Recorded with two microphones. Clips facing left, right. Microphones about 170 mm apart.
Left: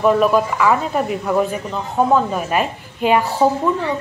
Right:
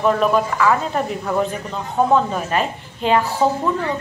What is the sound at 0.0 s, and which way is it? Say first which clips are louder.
A woman's voice: left 2 dB; 5° left (ahead or behind).